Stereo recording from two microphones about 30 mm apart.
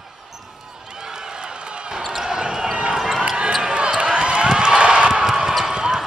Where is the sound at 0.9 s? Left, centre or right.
Right.